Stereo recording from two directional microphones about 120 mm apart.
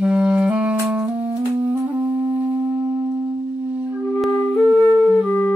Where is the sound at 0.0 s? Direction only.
10° right (ahead or behind).